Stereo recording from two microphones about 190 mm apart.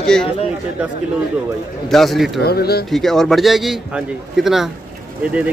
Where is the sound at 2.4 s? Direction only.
55° left (ahead or behind).